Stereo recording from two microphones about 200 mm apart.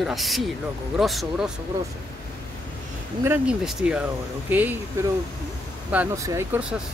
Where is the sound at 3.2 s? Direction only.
10° right (ahead or behind).